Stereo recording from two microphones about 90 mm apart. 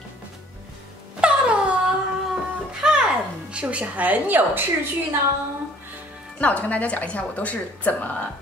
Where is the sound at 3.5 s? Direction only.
15° right (ahead or behind).